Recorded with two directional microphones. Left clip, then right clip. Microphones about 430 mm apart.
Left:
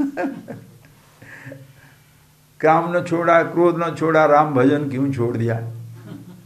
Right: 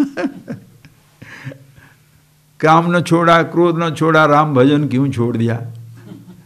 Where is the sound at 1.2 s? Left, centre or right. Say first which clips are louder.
Right 5 dB; right.